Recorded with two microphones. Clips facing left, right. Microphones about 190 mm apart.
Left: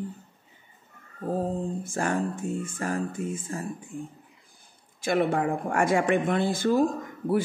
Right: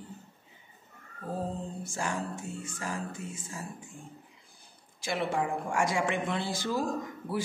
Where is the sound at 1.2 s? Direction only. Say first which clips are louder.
Left 7 dB; 55° left (ahead or behind).